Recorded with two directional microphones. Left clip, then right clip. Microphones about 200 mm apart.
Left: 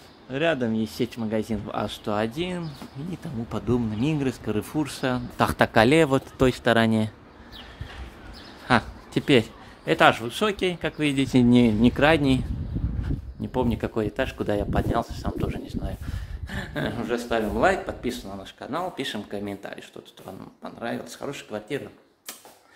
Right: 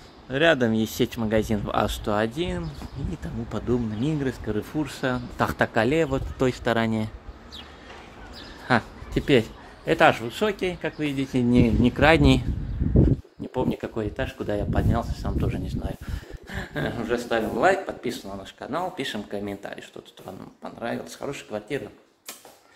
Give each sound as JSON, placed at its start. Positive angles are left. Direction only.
{"t": 0.3, "sound": "speech", "side_deg": -10}
{"t": 2.0, "sound": "speech", "side_deg": 0}
{"t": 6.4, "sound": "speech", "side_deg": 15}
{"t": 8.6, "sound": "a man's voice", "side_deg": 5}
{"t": 11.5, "sound": "speech", "side_deg": 10}
{"t": 13.5, "sound": "speech", "side_deg": 25}
{"t": 16.4, "sound": "speech", "side_deg": 10}